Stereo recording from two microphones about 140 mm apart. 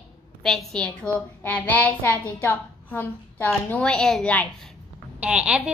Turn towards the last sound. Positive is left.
turn(degrees=-10)  # may be behind; listen again after turning